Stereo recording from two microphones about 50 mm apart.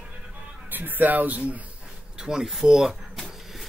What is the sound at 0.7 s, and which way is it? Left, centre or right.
Speech, right.